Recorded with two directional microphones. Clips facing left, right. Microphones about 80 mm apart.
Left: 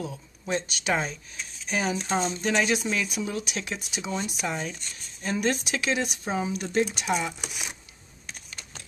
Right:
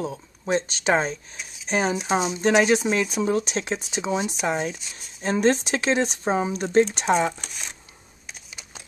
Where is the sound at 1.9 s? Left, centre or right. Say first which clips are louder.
Right 4 dB; centre.